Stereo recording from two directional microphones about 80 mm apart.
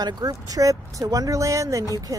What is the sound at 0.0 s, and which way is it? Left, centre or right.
Speech, right.